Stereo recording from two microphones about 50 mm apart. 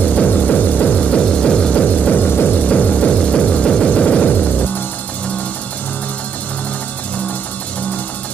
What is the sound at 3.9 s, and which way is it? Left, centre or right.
Vehicle, left.